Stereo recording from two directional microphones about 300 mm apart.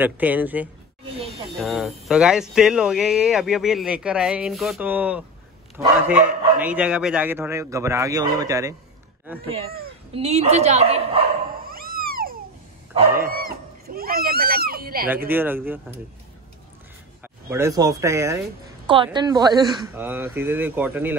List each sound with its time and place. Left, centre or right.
0.0 s a man's voice: centre
10.1 s dog: right
13.2 s a sound: right
15.2 s a man's voice: centre
17.2 s a man's voice: centre